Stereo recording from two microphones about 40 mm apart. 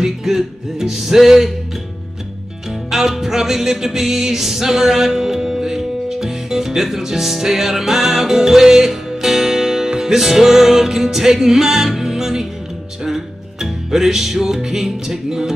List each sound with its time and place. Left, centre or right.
0.0 s music: centre
2.9 s music: centre